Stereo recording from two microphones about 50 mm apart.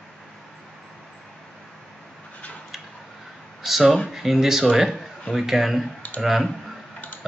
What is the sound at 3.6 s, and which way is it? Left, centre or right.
A man's voice, centre.